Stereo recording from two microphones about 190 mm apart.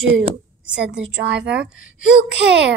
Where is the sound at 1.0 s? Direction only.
75° right (ahead or behind).